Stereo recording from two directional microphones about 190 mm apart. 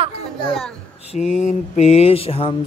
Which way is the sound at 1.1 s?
40° left (ahead or behind).